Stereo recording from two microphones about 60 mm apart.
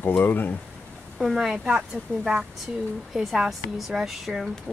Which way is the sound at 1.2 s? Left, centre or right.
Centre.